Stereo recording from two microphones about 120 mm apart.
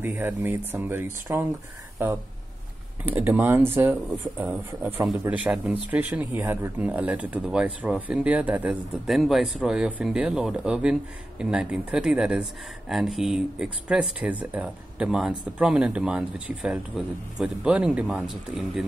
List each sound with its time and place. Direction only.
0.0 s speech: 15° right (ahead or behind)
9.1 s speech: centre (ahead or behind)